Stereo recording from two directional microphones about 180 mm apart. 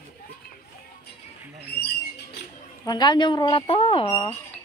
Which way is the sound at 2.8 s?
25° left (ahead or behind).